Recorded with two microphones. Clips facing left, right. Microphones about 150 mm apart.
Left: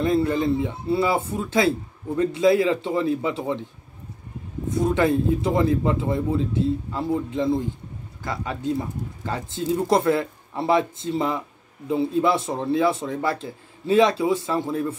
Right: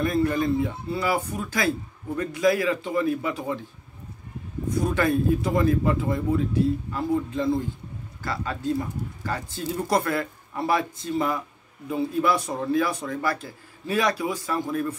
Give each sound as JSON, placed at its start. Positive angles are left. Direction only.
{"t": 0.0, "sound": "speech", "side_deg": 25}
{"t": 4.7, "sound": "speech", "side_deg": 20}